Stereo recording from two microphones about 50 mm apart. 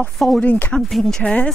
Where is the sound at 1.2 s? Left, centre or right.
Left.